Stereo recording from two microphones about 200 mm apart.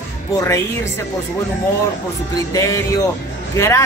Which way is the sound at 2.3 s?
15° left (ahead or behind).